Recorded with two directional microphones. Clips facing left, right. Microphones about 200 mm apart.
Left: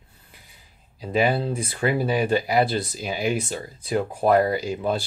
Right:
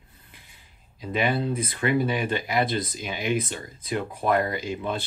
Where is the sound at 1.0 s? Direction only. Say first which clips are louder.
Left 3 dB; 35° left (ahead or behind).